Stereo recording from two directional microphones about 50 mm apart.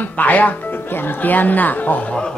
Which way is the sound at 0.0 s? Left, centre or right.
Left.